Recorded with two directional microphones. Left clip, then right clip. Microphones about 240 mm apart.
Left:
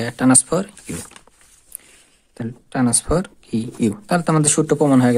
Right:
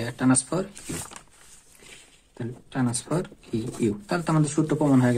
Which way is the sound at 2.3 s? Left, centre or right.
Left.